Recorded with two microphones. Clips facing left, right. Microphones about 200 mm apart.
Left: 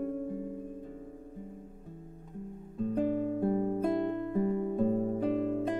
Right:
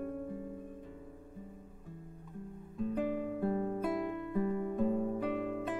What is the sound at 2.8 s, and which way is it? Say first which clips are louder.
Guitar: left 5 dB; 35° left (ahead or behind).